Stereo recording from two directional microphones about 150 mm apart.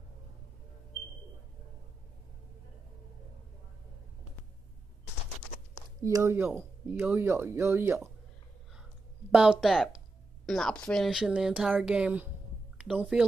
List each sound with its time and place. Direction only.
6.0 s speech: 20° right (ahead or behind)
9.3 s speech: 5° right (ahead or behind)
12.7 s a sound: 10° right (ahead or behind)